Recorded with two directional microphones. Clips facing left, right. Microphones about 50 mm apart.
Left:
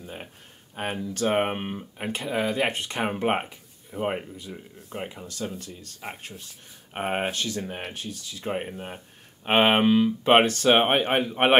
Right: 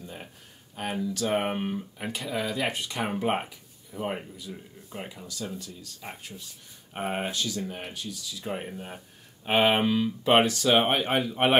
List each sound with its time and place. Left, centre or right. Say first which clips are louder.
0.0 s a sound: left 2 dB; left
0.7 s speech: left 1 dB; left
5.2 s speech: left 3 dB; left